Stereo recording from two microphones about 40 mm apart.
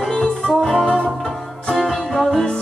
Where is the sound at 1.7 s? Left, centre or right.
Centre.